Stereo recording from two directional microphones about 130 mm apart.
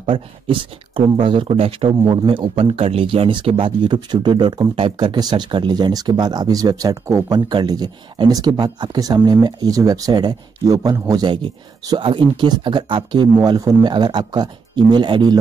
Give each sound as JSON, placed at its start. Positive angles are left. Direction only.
{"t": 0.0, "sound": "a man's voice", "side_deg": -40}